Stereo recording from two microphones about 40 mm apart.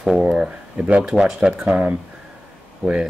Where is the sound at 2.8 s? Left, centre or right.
Left.